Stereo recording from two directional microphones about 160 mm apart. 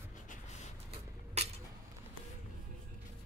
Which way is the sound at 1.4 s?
40° right (ahead or behind).